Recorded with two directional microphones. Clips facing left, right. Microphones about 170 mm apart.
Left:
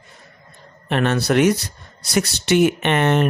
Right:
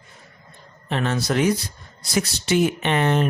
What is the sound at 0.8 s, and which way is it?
Speech, 65° left (ahead or behind).